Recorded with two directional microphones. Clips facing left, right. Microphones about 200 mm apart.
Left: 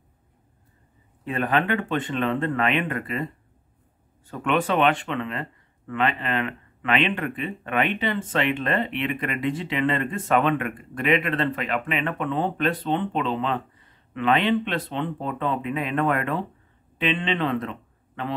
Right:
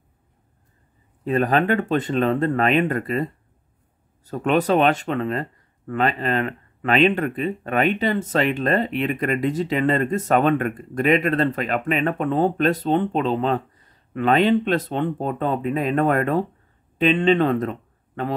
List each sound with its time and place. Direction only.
1.2 s a man's voice: 40° right (ahead or behind)